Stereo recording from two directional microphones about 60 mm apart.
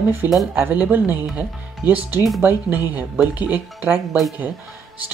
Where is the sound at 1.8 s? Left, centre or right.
Left.